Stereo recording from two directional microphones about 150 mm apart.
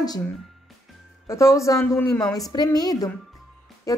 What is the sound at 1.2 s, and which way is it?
A woman's voice, 20° left (ahead or behind).